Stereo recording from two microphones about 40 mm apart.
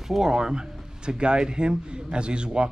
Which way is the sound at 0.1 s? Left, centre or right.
Centre.